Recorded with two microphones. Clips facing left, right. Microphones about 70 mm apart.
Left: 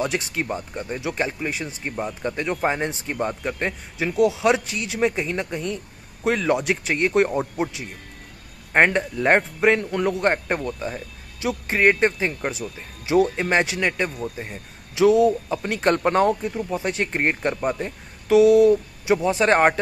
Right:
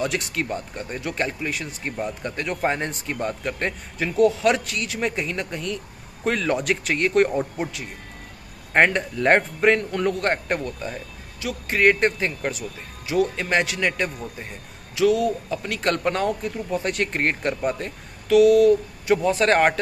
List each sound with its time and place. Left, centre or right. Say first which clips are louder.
0.0 s speech: left 1 dB; centre
0.5 s speech: left 1 dB; centre
6.2 s speech: left 2 dB; centre
18.3 s speech: left 1 dB; left